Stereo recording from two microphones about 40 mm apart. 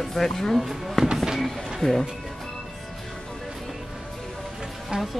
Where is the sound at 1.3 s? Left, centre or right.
Centre.